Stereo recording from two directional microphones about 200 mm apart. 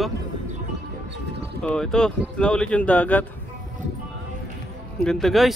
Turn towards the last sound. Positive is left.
turn(degrees=0)  # may be behind; listen again after turning